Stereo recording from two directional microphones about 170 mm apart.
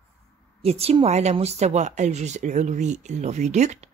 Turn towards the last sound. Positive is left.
turn(degrees=-40)  # may be behind; listen again after turning